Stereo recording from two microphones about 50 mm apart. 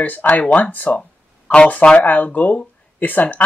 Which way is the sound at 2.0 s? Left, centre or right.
Left.